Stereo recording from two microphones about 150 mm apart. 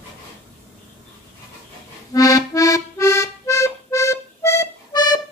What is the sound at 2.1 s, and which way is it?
Music, 20° left (ahead or behind).